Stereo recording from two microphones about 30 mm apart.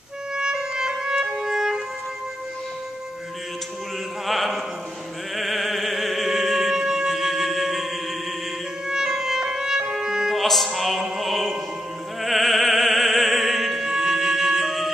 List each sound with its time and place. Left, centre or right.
0.4 s music: right
4.3 s music: centre
6.7 s music: centre
8.8 s music: centre
10.3 s music: centre
14.6 s music: centre